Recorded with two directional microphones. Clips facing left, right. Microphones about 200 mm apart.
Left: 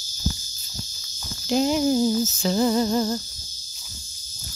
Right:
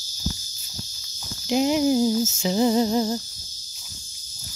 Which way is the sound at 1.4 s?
15° right (ahead or behind).